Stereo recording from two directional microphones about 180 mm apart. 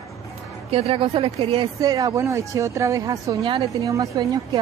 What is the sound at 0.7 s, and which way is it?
Speech, 35° right (ahead or behind).